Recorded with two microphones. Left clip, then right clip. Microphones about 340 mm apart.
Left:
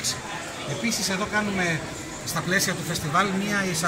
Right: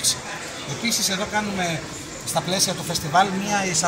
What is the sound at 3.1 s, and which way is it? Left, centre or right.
Speech, right.